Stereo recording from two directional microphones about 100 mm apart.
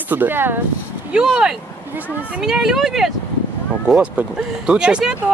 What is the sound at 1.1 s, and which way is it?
Speech, 10° right (ahead or behind).